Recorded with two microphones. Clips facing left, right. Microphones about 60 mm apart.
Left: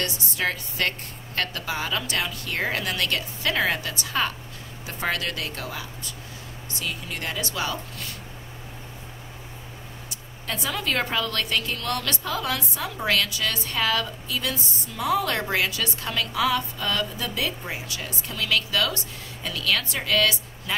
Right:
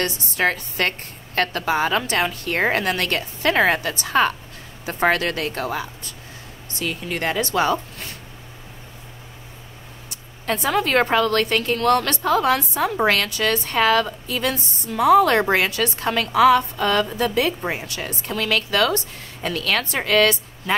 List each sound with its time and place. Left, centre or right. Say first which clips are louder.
0.0 s speech: right 6 dB; right
10.0 s speech: right 9 dB; right